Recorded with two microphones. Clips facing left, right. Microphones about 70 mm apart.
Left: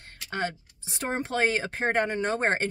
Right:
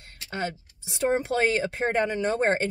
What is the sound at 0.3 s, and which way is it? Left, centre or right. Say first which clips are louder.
Speech: even; left.